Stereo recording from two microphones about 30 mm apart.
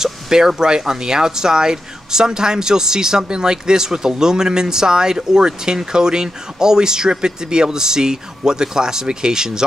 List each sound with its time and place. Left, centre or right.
0.0 s speech: centre